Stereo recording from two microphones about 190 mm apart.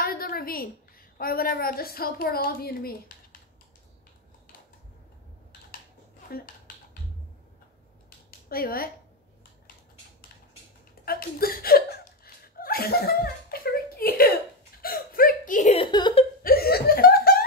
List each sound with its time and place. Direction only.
0.0 s a sound: 50° left (ahead or behind)
1.1 s a woman's voice: 50° left (ahead or behind)
6.3 s finger snapping: 50° left (ahead or behind)
8.3 s speech: 50° left (ahead or behind)
11.1 s speech: 50° left (ahead or behind)
14.8 s hiccup: 50° left (ahead or behind)
15.9 s laughter: 25° left (ahead or behind)
16.4 s laughter: 55° left (ahead or behind)